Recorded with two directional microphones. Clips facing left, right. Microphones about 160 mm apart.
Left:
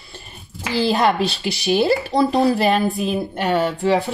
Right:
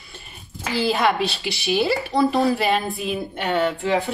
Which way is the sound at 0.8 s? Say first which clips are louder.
Left 3 dB; 40° left (ahead or behind).